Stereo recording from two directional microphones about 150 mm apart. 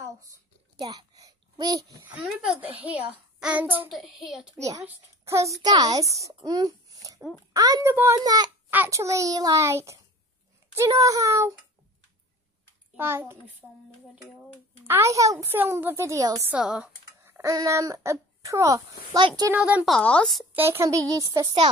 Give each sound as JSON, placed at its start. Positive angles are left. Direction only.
{"t": 0.7, "sound": "a sound", "side_deg": -25}
{"t": 2.0, "sound": "a child's voice", "side_deg": -5}
{"t": 4.6, "sound": "a child's voice", "side_deg": -20}
{"t": 7.2, "sound": "a child's voice", "side_deg": 0}
{"t": 7.5, "sound": "a child's voice", "side_deg": -25}
{"t": 8.6, "sound": "a child's voice", "side_deg": -15}
{"t": 12.9, "sound": "a child's voice", "side_deg": -15}
{"t": 14.9, "sound": "a child's voice", "side_deg": -20}
{"t": 16.4, "sound": "a child's voice", "side_deg": -5}
{"t": 17.2, "sound": "a child's voice", "side_deg": -15}
{"t": 19.5, "sound": "a child's voice", "side_deg": -10}
{"t": 20.0, "sound": "speech", "side_deg": 5}
{"t": 20.5, "sound": "a child's voice", "side_deg": -15}